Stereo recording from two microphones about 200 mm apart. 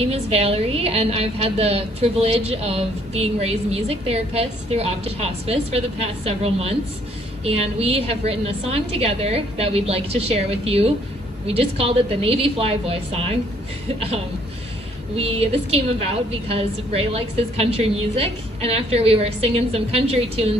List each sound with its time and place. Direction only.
0.0 s a woman's voice: 30° right (ahead or behind)